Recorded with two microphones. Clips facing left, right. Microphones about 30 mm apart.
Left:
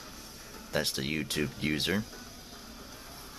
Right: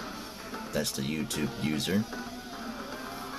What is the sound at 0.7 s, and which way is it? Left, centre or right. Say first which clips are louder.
Speech: left 1 dB; left.